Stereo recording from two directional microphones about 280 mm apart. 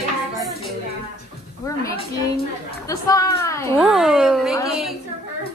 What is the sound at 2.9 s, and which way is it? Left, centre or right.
Speech, centre.